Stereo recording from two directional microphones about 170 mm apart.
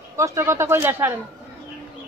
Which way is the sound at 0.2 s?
15° right (ahead or behind).